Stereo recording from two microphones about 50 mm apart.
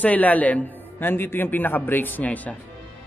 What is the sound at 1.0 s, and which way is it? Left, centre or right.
A man's voice, left.